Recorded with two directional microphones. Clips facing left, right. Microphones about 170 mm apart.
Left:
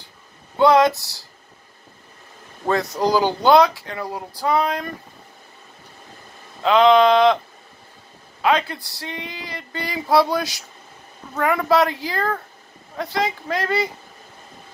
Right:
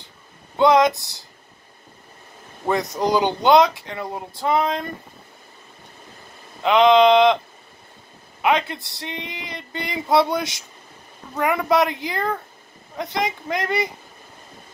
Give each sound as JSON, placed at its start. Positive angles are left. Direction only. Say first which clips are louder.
{"t": 0.6, "sound": "speech", "louder": "left 1 dB", "side_deg": -20}
{"t": 2.6, "sound": "speech", "louder": "left 1 dB", "side_deg": -20}
{"t": 6.6, "sound": "speech", "louder": "even", "side_deg": -20}
{"t": 8.4, "sound": "speech", "louder": "left 1 dB", "side_deg": -20}